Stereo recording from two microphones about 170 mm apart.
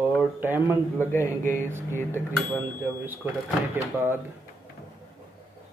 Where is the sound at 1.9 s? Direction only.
15° left (ahead or behind).